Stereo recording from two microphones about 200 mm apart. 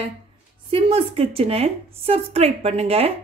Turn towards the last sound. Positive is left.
turn(degrees=-30)  # may be behind; listen again after turning